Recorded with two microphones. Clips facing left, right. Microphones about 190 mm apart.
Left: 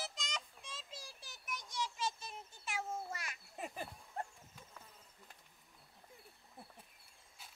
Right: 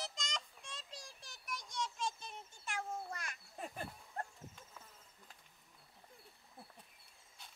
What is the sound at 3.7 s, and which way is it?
Insect, 5° left (ahead or behind).